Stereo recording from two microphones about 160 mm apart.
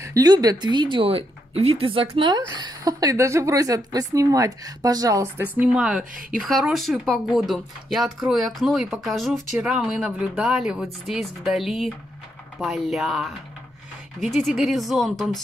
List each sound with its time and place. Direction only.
0.0 s a woman's voice: 20° right (ahead or behind); by 15.4 s centre (ahead or behind)